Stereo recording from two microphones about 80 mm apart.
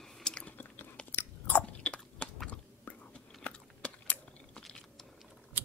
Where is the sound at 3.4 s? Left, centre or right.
Centre.